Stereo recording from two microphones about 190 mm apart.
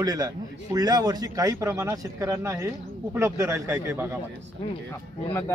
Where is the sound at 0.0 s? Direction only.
20° right (ahead or behind).